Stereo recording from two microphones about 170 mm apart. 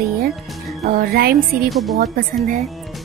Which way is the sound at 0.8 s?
60° right (ahead or behind).